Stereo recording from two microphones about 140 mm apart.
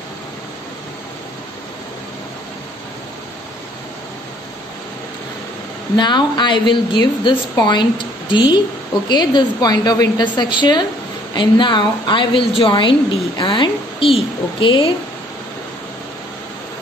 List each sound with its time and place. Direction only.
5.9 s a woman's voice: 30° left (ahead or behind)